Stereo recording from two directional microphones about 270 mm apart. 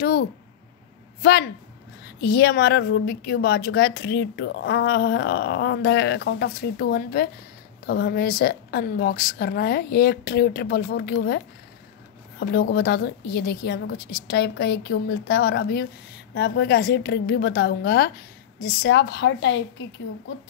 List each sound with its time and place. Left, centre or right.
0.0 s a woman's voice: left
2.2 s a woman's voice: left